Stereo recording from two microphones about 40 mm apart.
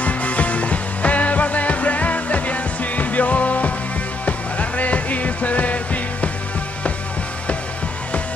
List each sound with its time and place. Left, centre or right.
0.0 s music: left